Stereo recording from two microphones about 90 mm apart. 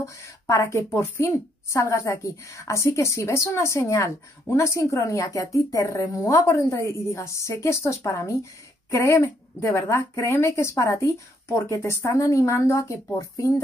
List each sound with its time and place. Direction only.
0.0 s a woman's voice: 35° left (ahead or behind)